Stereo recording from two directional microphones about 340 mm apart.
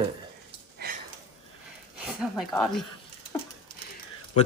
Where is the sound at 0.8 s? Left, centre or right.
Right.